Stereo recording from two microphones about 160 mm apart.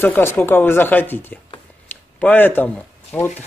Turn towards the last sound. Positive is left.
turn(degrees=10)  # may be behind; listen again after turning